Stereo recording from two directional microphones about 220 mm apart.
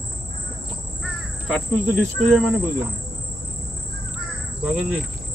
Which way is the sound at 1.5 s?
5° left (ahead or behind).